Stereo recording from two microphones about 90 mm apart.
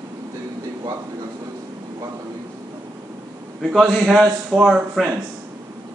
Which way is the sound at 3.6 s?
5° left (ahead or behind).